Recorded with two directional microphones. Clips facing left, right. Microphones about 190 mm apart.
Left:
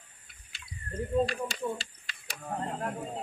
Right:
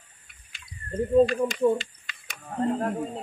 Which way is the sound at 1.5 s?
35° left (ahead or behind).